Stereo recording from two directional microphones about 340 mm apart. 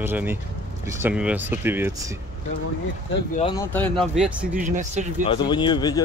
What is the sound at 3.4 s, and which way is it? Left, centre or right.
Speech, centre.